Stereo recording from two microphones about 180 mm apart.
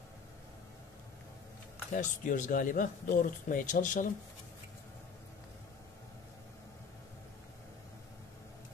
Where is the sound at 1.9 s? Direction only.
45° left (ahead or behind).